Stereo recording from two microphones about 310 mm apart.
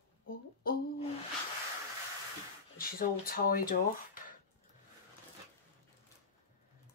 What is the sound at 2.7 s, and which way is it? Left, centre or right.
Speech, left.